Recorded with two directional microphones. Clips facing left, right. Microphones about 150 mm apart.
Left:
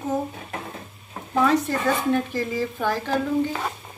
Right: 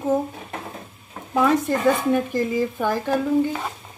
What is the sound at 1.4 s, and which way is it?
Frying, 15° right (ahead or behind).